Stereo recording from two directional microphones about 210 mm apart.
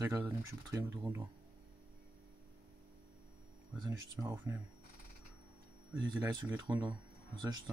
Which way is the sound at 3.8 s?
15° right (ahead or behind).